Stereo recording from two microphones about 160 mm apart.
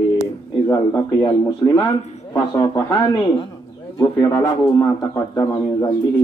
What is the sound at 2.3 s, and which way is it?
A man's voice, 25° left (ahead or behind).